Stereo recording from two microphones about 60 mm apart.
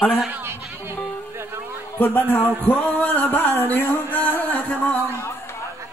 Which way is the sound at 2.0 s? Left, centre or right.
Left.